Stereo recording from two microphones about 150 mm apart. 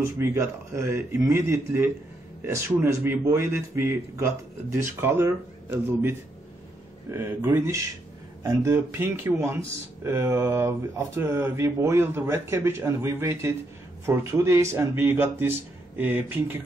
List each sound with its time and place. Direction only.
0.2 s speech: 20° right (ahead or behind)